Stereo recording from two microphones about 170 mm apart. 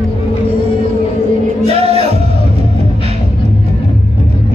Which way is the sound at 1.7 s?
35° right (ahead or behind).